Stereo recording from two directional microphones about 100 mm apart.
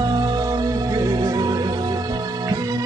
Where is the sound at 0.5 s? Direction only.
40° right (ahead or behind).